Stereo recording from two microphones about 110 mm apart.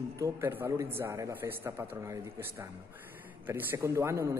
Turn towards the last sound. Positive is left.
turn(degrees=-25)  # may be behind; listen again after turning